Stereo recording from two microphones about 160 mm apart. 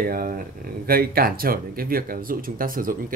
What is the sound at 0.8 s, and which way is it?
Speech, 70° right (ahead or behind).